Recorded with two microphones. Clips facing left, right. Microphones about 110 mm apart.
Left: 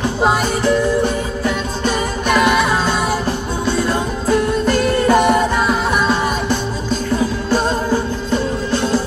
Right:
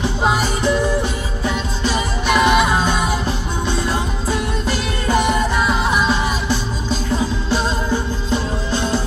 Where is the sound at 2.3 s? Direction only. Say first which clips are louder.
Even; 20° right (ahead or behind).